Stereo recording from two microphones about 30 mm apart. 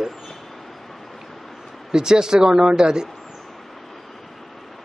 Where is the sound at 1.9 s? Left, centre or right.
Right.